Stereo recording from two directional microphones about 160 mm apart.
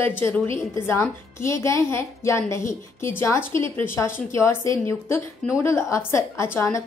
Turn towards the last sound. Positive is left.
turn(degrees=15)  # may be behind; listen again after turning